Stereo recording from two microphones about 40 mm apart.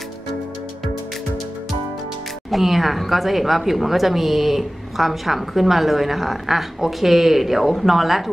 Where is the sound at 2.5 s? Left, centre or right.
Centre.